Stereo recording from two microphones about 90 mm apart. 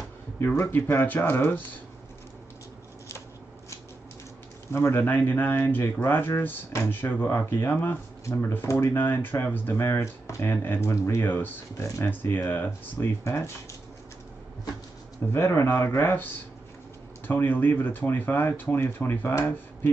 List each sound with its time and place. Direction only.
0.4 s speech: 25° left (ahead or behind)
4.7 s speech: 25° left (ahead or behind)
15.3 s speech: 30° left (ahead or behind)
17.3 s speech: 25° left (ahead or behind)